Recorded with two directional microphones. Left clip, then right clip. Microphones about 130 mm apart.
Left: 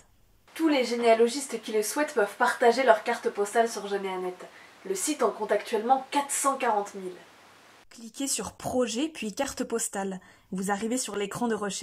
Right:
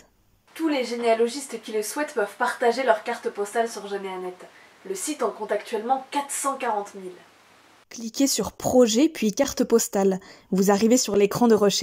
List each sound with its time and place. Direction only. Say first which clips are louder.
0.6 s speech: even; centre (ahead or behind)
7.9 s speech: right 9 dB; 25° right (ahead or behind)